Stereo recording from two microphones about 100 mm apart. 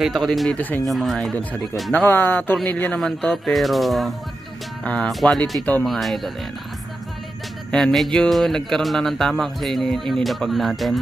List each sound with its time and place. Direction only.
0.0 s speech: centre (ahead or behind)
0.6 s a man's voice: 15° left (ahead or behind)
0.8 s speech: centre (ahead or behind)
2.0 s a man's voice: 20° left (ahead or behind)
3.0 s speech: 5° left (ahead or behind)
4.8 s a man's voice: 10° left (ahead or behind)
7.7 s speech: 5° left (ahead or behind)